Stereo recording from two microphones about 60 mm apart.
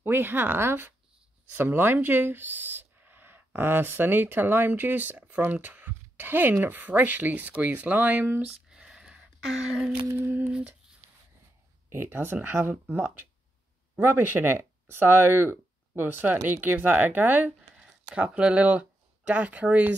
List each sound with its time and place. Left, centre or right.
0.0 s speech: right
8.5 s a sound: centre
10.5 s speech: right
11.9 s speech: right